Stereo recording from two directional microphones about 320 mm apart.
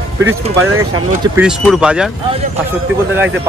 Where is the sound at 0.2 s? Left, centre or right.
Right.